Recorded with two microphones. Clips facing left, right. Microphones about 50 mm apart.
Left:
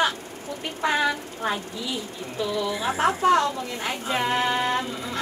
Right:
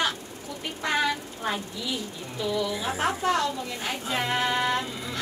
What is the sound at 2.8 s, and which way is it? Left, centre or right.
Speech, left.